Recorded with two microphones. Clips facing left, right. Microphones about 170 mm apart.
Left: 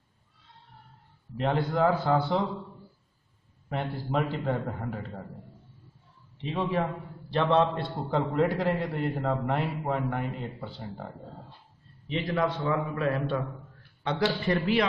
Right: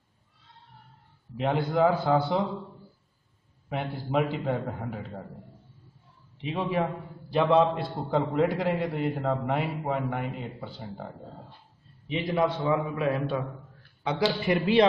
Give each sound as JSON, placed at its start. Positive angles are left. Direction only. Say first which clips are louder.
{"t": 1.3, "sound": "a man's voice", "louder": "right 1 dB", "side_deg": -5}
{"t": 3.6, "sound": "a man's voice", "louder": "even", "side_deg": 0}
{"t": 6.4, "sound": "a man's voice", "louder": "right 1 dB", "side_deg": -5}
{"t": 12.1, "sound": "a man's voice", "louder": "right 2 dB", "side_deg": -15}
{"t": 14.5, "sound": "a man's voice", "louder": "right 6 dB", "side_deg": -25}